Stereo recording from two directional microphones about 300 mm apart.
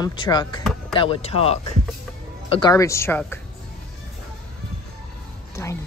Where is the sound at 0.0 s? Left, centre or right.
Centre.